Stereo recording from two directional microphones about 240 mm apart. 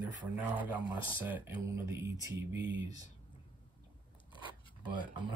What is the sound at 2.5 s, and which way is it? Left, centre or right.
Speech, right.